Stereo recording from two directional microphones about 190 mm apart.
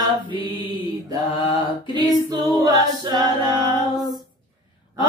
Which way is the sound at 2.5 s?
20° right (ahead or behind).